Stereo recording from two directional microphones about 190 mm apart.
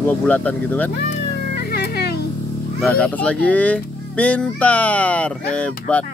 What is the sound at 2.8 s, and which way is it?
Speech, 5° left (ahead or behind).